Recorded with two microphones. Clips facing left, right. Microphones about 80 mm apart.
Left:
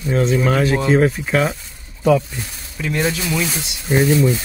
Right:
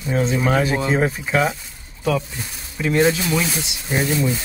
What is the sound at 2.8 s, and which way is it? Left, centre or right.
Speech, right.